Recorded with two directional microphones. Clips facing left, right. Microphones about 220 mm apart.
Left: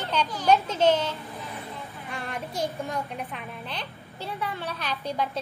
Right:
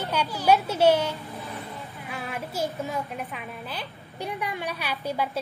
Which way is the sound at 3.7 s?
15° right (ahead or behind).